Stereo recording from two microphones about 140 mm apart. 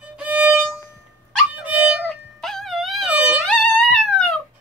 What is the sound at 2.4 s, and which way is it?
Music, centre (ahead or behind).